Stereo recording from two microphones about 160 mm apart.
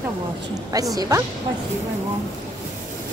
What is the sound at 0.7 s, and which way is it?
Speech, 20° right (ahead or behind).